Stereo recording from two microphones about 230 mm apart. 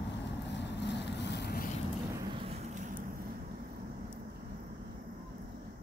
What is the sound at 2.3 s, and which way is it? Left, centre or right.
Vehicle, right.